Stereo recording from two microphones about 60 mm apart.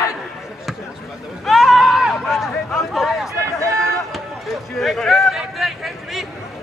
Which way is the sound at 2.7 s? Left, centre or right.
Centre.